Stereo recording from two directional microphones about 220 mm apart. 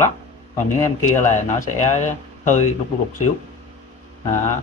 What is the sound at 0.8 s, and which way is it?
Speech, 15° left (ahead or behind).